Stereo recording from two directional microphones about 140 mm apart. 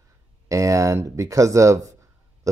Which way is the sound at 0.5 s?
25° right (ahead or behind).